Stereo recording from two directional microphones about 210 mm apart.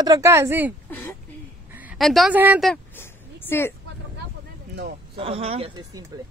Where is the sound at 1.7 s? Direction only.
5° right (ahead or behind); by 3.7 s 10° left (ahead or behind).